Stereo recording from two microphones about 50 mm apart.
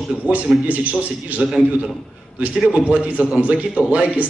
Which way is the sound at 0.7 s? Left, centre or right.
Right.